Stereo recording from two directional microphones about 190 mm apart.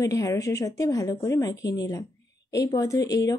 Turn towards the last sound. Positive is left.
turn(degrees=20)  # may be behind; listen again after turning